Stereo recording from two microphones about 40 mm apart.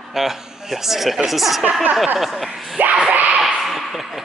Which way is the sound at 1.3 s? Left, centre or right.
Centre.